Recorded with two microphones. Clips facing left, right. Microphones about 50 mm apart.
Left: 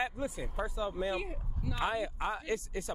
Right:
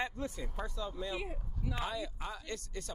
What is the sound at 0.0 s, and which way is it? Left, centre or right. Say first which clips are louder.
Speech: left 3 dB; centre.